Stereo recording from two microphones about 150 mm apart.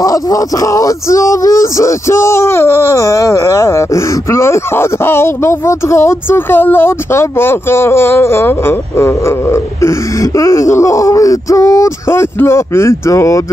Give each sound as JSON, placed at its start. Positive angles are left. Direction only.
{"t": 0.0, "sound": "speech", "side_deg": 25}